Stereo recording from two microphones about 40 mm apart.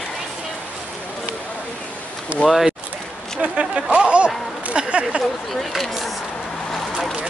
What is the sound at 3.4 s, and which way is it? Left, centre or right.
Speech, right.